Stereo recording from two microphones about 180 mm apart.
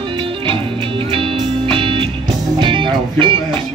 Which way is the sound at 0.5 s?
30° right (ahead or behind).